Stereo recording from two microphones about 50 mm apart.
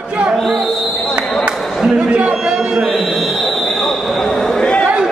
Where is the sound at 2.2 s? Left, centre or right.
Right.